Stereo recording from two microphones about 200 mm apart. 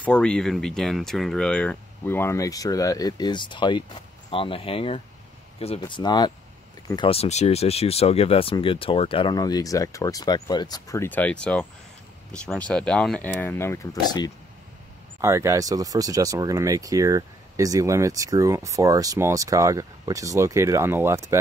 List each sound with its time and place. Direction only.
0.0 s speech: 5° left (ahead or behind)
15.1 s speech: 15° right (ahead or behind)